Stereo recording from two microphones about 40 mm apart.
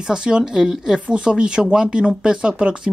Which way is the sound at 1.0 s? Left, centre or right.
Right.